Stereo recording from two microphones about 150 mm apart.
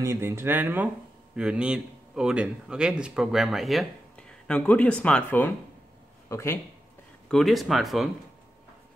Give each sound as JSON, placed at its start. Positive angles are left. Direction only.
{"t": 0.0, "sound": "a man's voice", "side_deg": -15}
{"t": 7.2, "sound": "a man's voice", "side_deg": 0}